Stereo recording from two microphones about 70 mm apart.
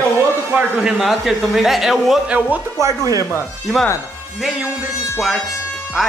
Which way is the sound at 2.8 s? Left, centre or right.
Right.